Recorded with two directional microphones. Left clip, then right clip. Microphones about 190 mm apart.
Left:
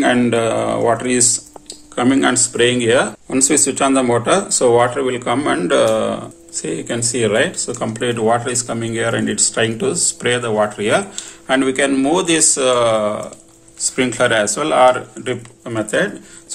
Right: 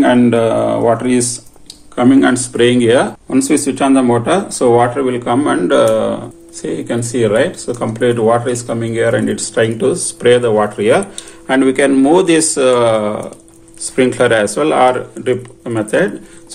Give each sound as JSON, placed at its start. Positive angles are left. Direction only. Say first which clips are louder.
{"t": 0.0, "sound": "speech", "louder": "right 4 dB", "side_deg": 10}